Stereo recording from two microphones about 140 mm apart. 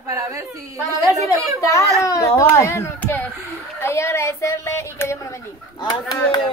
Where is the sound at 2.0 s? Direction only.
20° left (ahead or behind).